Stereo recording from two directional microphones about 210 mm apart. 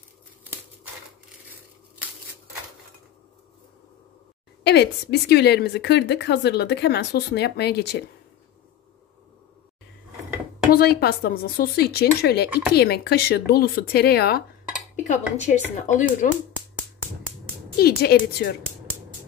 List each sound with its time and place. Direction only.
4.6 s a woman's voice: 50° left (ahead or behind)
10.7 s a woman's voice: 45° left (ahead or behind)
15.0 s speech: 35° left (ahead or behind)
17.7 s a woman's voice: 45° left (ahead or behind)